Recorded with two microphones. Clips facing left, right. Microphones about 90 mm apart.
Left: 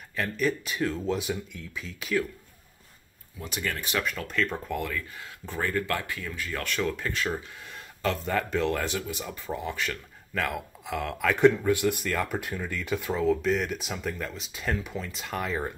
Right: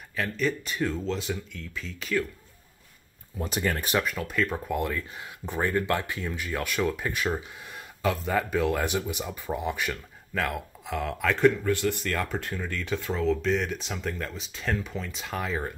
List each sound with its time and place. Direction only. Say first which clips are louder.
0.1 s speech: even; centre (ahead or behind)
3.3 s speech: right 4 dB; 40° right (ahead or behind)
4.0 s speech: right 1 dB; 5° right (ahead or behind)
10.3 s speech: right 1 dB; centre (ahead or behind)
11.3 s speech: left 2 dB; 20° left (ahead or behind); by 15.7 s centre (ahead or behind)